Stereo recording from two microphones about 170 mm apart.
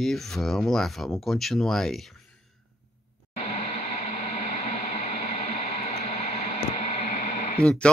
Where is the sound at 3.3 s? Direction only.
40° left (ahead or behind).